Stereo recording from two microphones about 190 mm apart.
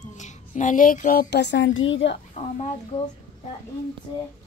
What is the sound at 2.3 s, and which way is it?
Speech, 35° left (ahead or behind).